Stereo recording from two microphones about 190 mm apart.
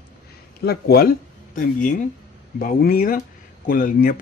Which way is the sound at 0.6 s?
55° left (ahead or behind).